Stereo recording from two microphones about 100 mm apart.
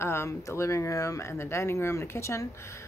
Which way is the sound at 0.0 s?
25° left (ahead or behind).